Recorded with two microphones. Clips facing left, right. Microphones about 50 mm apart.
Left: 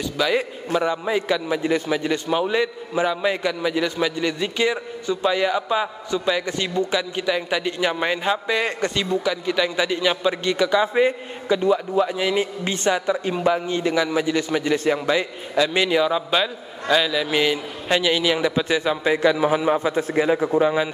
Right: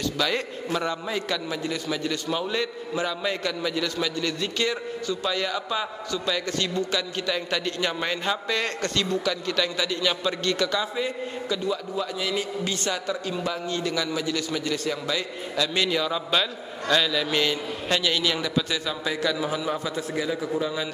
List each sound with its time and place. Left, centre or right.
0.2 s a man's voice: centre
10.8 s a man's voice: left